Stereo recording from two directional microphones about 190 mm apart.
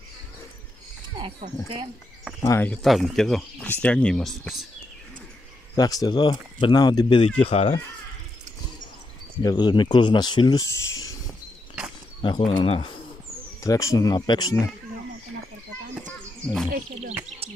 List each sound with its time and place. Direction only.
2.4 s speech: 10° left (ahead or behind)
5.8 s speech: 20° left (ahead or behind)
9.4 s speech: 20° left (ahead or behind)
12.2 s speech: 25° left (ahead or behind)
13.6 s speech: 15° left (ahead or behind)